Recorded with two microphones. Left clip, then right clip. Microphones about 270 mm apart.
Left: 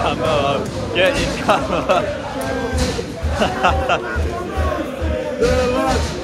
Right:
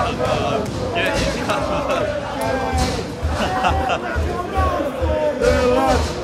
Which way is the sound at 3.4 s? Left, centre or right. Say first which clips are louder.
Left 2 dB; centre.